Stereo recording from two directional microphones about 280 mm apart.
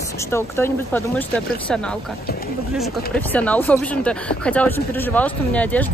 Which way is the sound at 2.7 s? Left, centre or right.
Centre.